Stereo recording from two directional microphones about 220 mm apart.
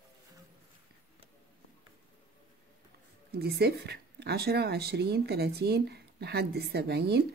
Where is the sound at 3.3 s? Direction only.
45° right (ahead or behind).